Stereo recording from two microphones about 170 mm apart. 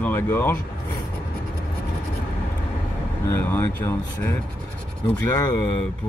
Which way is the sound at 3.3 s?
15° left (ahead or behind).